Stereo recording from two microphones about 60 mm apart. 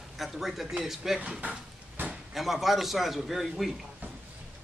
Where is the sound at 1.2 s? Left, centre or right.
Centre.